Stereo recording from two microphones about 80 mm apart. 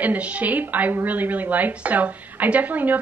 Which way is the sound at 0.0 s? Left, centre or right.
Centre.